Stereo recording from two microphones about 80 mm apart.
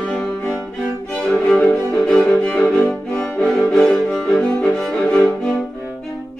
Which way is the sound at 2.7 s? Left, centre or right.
Centre.